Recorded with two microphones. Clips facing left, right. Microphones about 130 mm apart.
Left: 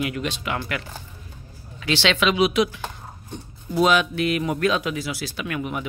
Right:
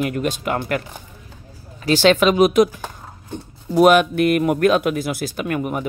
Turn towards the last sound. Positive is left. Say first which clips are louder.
# right 5 dB
turn(degrees=-45)  # may be behind; listen again after turning